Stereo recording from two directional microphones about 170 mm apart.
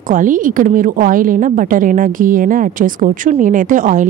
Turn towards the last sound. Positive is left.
turn(degrees=-50)  # may be behind; listen again after turning